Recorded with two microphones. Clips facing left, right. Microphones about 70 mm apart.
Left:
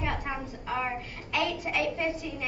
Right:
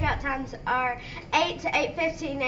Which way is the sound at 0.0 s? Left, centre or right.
Right.